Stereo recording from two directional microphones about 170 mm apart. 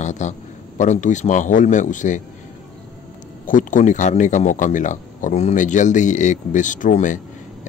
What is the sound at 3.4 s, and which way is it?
Speech, 50° left (ahead or behind).